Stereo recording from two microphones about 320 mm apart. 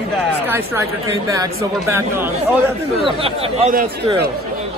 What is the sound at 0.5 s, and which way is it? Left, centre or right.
Speech, centre.